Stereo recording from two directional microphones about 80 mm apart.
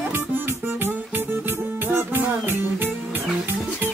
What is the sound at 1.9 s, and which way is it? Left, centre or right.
Music, right.